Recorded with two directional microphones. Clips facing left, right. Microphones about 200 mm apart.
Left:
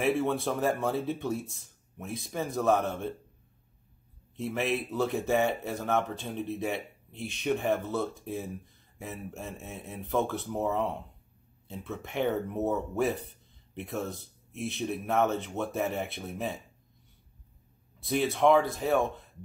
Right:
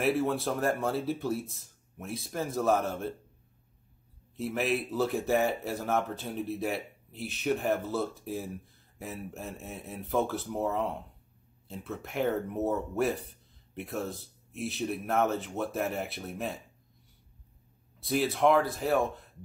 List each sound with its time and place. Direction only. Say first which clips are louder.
0.0 s speech: even; centre (ahead or behind)
4.4 s speech: even; 5° right (ahead or behind)
18.0 s speech: left 1 dB; centre (ahead or behind)